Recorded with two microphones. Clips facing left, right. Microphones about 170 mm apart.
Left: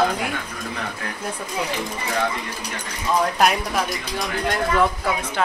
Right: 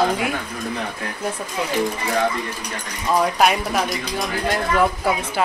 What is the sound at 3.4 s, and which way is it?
Speech, centre (ahead or behind).